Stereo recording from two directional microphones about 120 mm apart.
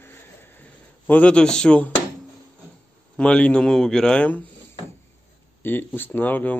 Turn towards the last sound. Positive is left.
turn(degrees=15)  # may be behind; listen again after turning